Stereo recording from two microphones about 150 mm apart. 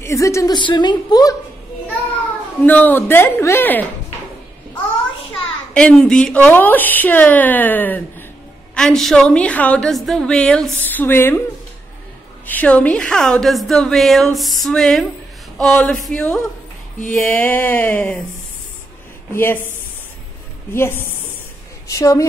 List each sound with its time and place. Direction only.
0.0 s a woman's voice: 20° left (ahead or behind)
2.6 s a woman's voice: 10° left (ahead or behind)
5.7 s a woman's voice: 5° left (ahead or behind)
12.4 s a woman's voice: 10° left (ahead or behind)
19.3 s a woman's voice: 15° left (ahead or behind)
20.7 s a woman's voice: 15° left (ahead or behind)